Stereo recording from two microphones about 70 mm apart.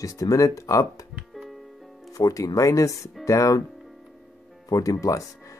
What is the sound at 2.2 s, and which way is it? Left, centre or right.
Speech, left.